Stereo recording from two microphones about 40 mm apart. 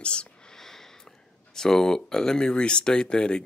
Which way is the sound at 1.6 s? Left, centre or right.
Centre.